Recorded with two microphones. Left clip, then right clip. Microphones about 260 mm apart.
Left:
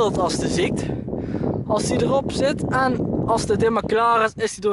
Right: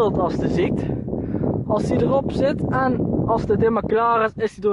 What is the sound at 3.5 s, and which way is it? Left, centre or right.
Speech, centre.